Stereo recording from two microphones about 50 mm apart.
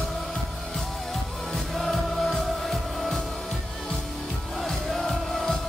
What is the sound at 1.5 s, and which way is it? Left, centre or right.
Music, centre.